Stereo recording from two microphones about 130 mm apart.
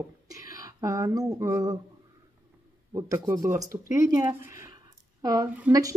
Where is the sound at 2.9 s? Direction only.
25° right (ahead or behind).